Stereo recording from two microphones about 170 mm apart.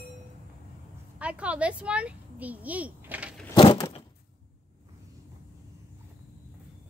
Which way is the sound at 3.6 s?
30° left (ahead or behind).